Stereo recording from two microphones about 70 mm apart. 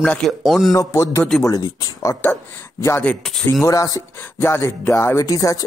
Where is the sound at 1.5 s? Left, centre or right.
Left.